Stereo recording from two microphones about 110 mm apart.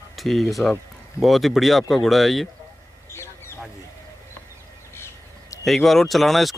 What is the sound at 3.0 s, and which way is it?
Bird, 25° left (ahead or behind).